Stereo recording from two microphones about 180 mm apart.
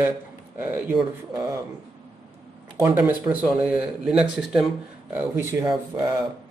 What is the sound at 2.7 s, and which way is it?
Speech, 20° right (ahead or behind).